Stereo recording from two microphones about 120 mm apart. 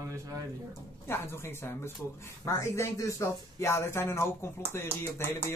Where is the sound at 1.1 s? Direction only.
20° left (ahead or behind).